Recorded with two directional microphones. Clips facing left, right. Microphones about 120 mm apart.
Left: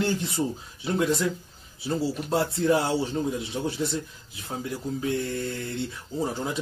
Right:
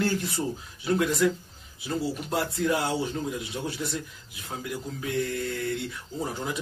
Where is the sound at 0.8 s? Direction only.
25° left (ahead or behind).